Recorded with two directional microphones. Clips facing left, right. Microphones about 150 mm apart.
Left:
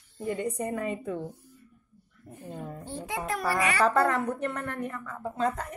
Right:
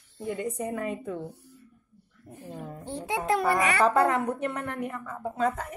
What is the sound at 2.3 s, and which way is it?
A woman's voice, 10° right (ahead or behind).